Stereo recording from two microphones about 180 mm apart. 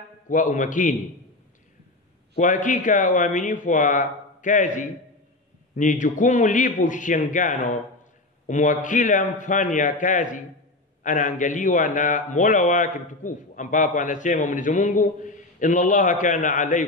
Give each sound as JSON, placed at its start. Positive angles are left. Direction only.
{"t": 0.3, "sound": "a man's voice", "side_deg": 45}
{"t": 2.3, "sound": "a man's voice", "side_deg": 45}